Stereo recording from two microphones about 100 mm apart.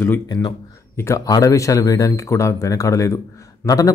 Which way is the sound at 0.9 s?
30° left (ahead or behind).